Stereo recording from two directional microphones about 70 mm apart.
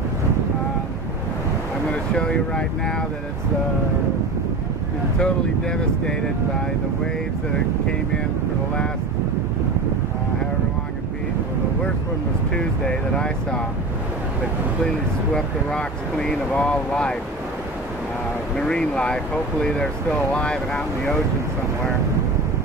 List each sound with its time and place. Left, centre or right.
1.9 s speech: centre
5.2 s speech: centre
12.5 s speech: centre
15.3 s speech: centre
18.6 s speech: centre